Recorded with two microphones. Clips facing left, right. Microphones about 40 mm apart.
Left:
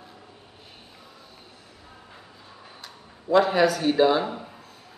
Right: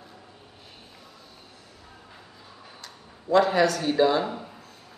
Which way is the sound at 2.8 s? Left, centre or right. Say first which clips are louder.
Left 1 dB; centre.